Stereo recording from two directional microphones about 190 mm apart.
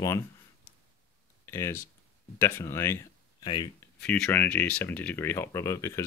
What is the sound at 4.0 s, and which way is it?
Speech, 5° left (ahead or behind).